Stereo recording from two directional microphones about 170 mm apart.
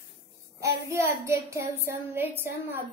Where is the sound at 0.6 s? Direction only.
15° right (ahead or behind).